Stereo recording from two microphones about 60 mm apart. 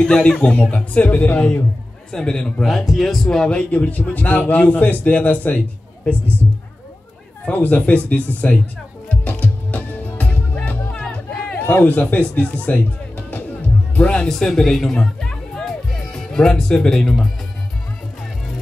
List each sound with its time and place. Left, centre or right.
0.0 s a man's voice: centre
2.0 s a man's voice: centre
2.6 s a man's voice: centre; by 5.6 s left
7.4 s a man's voice: left
9.1 s music: left
14.2 s speech: centre